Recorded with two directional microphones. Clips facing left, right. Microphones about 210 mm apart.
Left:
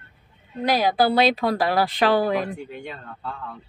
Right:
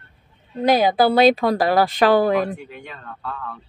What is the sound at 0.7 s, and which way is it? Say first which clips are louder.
Speech: right 4 dB; 50° right (ahead or behind).